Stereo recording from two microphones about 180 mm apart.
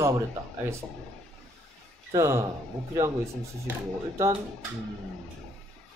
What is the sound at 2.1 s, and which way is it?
Speech, 15° right (ahead or behind).